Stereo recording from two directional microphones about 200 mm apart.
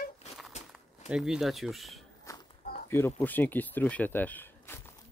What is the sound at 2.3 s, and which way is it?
Walk, 15° left (ahead or behind).